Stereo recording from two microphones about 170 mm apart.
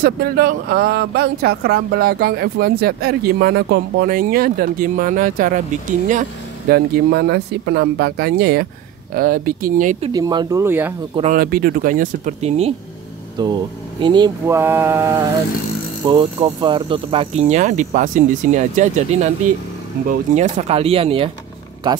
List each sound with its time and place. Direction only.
0.0 s speech: 65° right (ahead or behind); by 6.2 s 50° right (ahead or behind)
6.7 s speech: 75° right (ahead or behind); by 9.9 s 55° right (ahead or behind)
10.1 s speech: 25° right (ahead or behind)
11.3 s speech: 60° right (ahead or behind); by 12.7 s 40° right (ahead or behind)
13.4 s speech: 25° right (ahead or behind)
16.1 s speech: 30° right (ahead or behind)